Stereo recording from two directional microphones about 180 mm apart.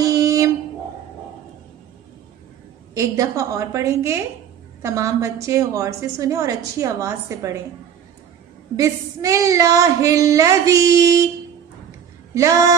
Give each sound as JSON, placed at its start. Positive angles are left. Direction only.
{"t": 0.0, "sound": "vehicle", "side_deg": -20}
{"t": 2.9, "sound": "a woman's voice", "side_deg": -20}
{"t": 8.7, "sound": "a woman's voice", "side_deg": -20}
{"t": 12.4, "sound": "a woman's voice", "side_deg": -20}